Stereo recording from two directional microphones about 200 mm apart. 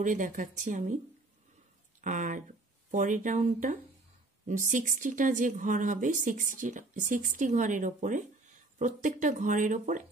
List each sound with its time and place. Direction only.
0.0 s speech: 40° right (ahead or behind)
2.0 s speech: 40° right (ahead or behind)